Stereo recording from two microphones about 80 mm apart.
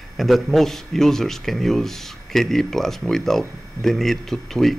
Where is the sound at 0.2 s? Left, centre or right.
Centre.